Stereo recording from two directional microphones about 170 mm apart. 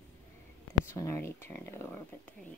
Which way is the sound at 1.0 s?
15° left (ahead or behind).